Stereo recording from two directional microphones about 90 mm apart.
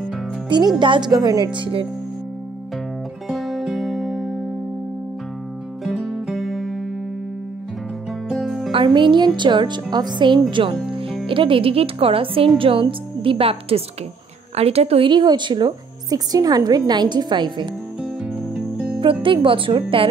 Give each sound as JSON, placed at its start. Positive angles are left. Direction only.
{"t": 0.7, "sound": "speech", "side_deg": -65}
{"t": 1.1, "sound": "a woman's voice", "side_deg": -45}
{"t": 1.5, "sound": "speech", "side_deg": -70}
{"t": 3.3, "sound": "music", "side_deg": 0}
{"t": 5.9, "sound": "music", "side_deg": 0}
{"t": 8.3, "sound": "music", "side_deg": 0}
{"t": 8.8, "sound": "speech", "side_deg": -60}
{"t": 10.9, "sound": "music", "side_deg": -80}
{"t": 11.2, "sound": "a woman's voice", "side_deg": -75}
{"t": 15.1, "sound": "a woman's voice", "side_deg": -55}
{"t": 18.2, "sound": "music", "side_deg": -5}
{"t": 19.2, "sound": "speech", "side_deg": -75}